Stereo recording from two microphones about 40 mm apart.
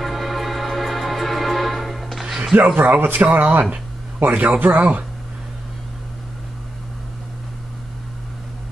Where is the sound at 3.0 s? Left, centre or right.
Right.